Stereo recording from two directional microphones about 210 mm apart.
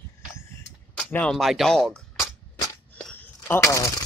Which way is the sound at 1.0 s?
5° left (ahead or behind).